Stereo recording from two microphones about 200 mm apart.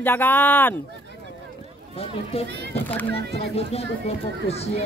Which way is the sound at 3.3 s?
30° left (ahead or behind).